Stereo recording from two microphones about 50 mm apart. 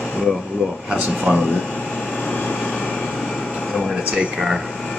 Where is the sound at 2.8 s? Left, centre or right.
Left.